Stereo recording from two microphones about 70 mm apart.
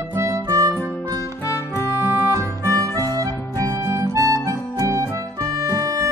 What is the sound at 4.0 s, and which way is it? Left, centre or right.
Music, right.